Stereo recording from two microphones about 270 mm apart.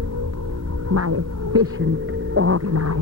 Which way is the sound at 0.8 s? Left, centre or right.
Right.